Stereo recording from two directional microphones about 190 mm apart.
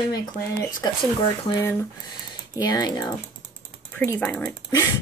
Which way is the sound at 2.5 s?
20° left (ahead or behind).